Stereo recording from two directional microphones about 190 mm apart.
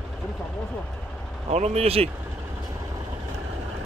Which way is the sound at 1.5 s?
35° right (ahead or behind).